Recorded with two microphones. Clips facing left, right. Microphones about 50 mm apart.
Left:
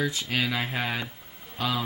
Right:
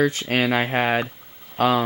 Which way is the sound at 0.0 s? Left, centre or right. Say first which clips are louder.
Right 7 dB; right.